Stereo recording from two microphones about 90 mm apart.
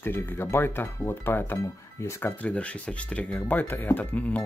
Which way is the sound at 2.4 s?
15° left (ahead or behind).